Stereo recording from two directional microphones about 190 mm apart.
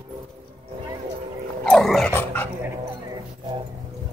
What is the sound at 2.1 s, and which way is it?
Speech, 10° left (ahead or behind).